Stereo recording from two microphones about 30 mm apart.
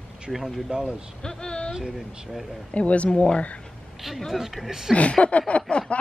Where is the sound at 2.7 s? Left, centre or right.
Left.